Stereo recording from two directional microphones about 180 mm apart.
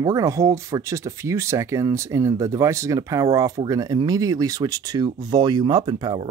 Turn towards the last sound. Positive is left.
turn(degrees=-25)  # may be behind; listen again after turning